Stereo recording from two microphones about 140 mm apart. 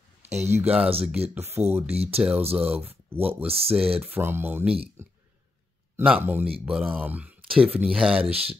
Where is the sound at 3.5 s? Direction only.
45° right (ahead or behind).